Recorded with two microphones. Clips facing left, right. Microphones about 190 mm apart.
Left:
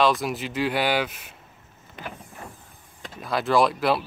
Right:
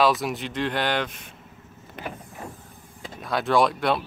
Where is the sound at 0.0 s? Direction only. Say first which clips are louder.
Even; centre (ahead or behind).